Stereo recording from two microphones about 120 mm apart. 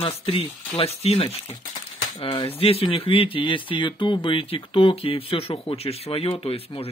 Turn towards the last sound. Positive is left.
turn(degrees=55)  # may be behind; listen again after turning